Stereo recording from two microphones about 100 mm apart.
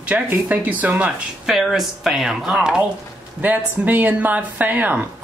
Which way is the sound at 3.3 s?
15° right (ahead or behind).